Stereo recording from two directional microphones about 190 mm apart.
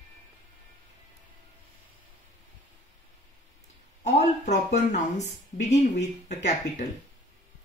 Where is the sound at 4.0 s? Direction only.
40° left (ahead or behind).